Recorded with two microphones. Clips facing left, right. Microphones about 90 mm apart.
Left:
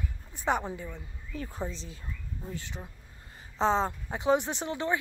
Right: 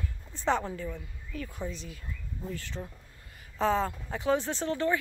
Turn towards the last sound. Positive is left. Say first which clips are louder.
# right 2 dB
turn(degrees=20)  # may be behind; listen again after turning